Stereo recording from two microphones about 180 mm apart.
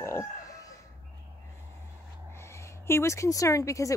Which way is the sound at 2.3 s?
15° left (ahead or behind).